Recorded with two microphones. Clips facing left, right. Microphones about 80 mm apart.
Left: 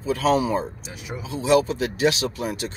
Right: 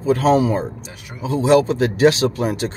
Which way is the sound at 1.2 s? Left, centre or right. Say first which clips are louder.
Right 5 dB; right.